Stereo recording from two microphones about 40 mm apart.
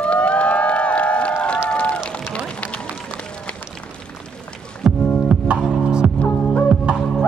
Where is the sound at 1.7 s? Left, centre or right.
Left.